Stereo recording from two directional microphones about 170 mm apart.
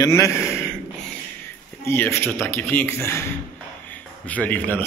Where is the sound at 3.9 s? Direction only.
10° left (ahead or behind).